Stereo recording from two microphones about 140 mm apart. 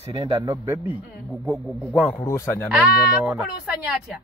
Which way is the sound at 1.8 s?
5° right (ahead or behind).